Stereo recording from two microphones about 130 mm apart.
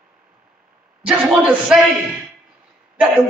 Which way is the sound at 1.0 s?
5° right (ahead or behind).